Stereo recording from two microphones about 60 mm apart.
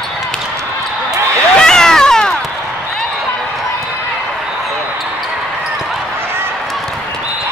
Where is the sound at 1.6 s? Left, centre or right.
Centre.